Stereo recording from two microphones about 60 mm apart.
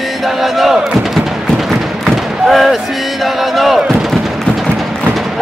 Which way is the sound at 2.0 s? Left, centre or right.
Centre.